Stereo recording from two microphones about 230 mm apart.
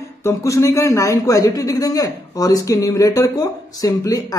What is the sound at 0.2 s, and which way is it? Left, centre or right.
A man's voice, centre.